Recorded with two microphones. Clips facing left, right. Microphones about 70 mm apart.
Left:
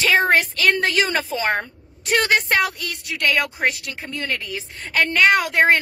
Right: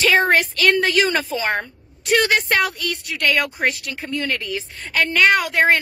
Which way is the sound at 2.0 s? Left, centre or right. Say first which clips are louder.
Right 1 dB; left.